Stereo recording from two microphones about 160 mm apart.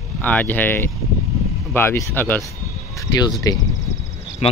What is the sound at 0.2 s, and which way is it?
Speech, 10° left (ahead or behind).